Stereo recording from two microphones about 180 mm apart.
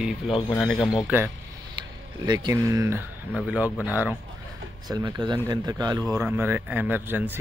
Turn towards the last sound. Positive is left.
turn(degrees=-10)  # may be behind; listen again after turning